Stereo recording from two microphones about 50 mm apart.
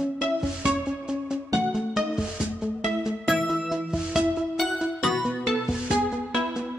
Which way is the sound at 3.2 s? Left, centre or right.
Centre.